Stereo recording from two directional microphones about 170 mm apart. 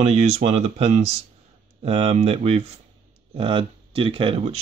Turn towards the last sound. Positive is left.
turn(degrees=-35)  # may be behind; listen again after turning